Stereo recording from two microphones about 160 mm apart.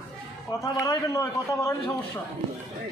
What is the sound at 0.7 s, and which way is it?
A man's voice, 20° left (ahead or behind).